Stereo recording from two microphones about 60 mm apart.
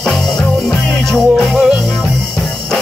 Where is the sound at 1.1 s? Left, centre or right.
Centre.